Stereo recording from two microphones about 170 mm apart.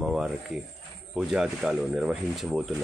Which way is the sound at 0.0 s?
Centre (ahead or behind).